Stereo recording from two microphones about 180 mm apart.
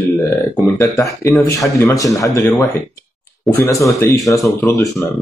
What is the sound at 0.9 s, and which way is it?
Speech, 20° left (ahead or behind).